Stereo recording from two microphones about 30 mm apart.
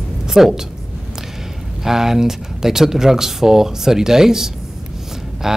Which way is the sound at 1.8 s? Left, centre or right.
Centre.